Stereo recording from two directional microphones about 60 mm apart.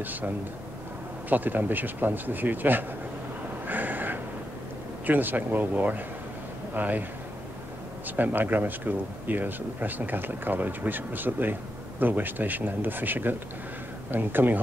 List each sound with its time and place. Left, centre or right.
0.0 s speech: right
1.3 s speech: right
3.6 s a sound: right
5.0 s speech: right
8.2 s speech: right